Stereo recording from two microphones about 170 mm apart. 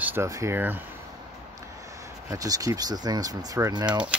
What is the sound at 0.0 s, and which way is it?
Speech, 15° right (ahead or behind).